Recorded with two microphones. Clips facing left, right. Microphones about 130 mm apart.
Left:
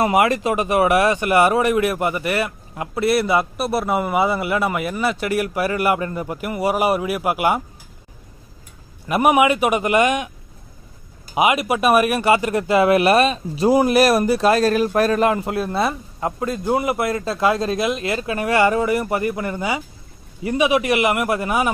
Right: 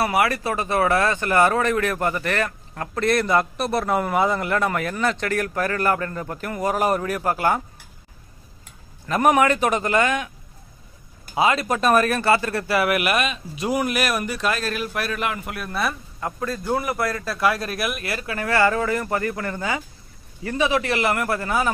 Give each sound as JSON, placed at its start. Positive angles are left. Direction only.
{"t": 0.0, "sound": "speech", "side_deg": 20}
{"t": 9.0, "sound": "speech", "side_deg": 10}
{"t": 11.3, "sound": "speech", "side_deg": 15}